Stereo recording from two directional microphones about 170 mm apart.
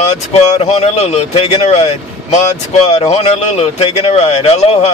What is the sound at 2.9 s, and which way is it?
Speech, 40° left (ahead or behind).